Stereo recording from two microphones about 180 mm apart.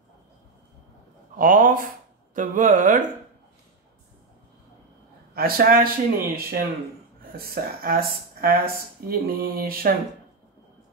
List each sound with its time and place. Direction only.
1.3 s speech: 50° right (ahead or behind)
5.3 s speech: 55° right (ahead or behind)